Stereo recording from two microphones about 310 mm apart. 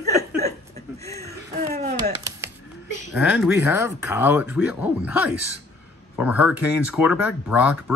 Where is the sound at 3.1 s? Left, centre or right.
Centre.